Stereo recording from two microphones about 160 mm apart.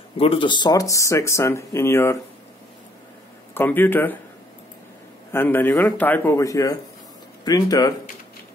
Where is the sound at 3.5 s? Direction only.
10° left (ahead or behind).